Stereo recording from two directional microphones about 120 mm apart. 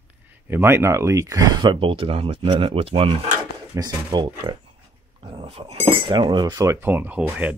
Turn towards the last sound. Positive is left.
turn(degrees=-10)  # may be behind; listen again after turning